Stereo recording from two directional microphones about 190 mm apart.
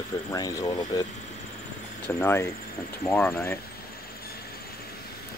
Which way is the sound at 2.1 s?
15° left (ahead or behind).